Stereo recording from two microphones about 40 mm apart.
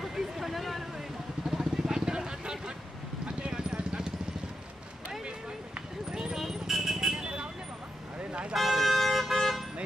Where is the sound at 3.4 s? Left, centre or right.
Right.